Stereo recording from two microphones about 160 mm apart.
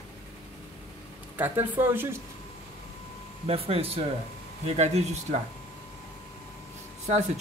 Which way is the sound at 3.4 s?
40° right (ahead or behind).